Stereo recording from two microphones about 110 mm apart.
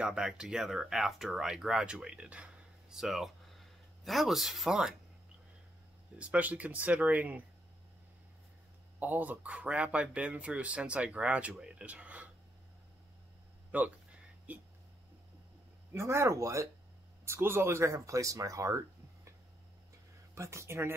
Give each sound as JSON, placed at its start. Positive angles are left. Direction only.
{"t": 0.0, "sound": "speech", "side_deg": -5}
{"t": 6.1, "sound": "speech", "side_deg": -15}
{"t": 9.0, "sound": "speech", "side_deg": -15}
{"t": 13.7, "sound": "speech", "side_deg": -15}
{"t": 15.9, "sound": "speech", "side_deg": -25}
{"t": 20.3, "sound": "speech", "side_deg": -25}